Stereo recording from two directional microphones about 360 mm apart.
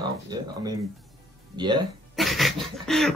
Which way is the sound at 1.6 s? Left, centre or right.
Centre.